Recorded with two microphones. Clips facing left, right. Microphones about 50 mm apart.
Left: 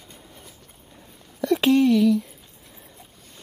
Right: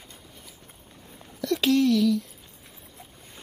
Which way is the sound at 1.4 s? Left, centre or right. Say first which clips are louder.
Left 4 dB; centre.